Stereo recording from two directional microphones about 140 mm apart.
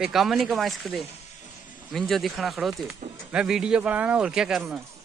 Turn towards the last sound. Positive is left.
turn(degrees=-5)  # may be behind; listen again after turning